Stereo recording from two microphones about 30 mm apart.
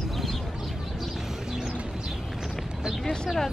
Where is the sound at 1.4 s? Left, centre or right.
Centre.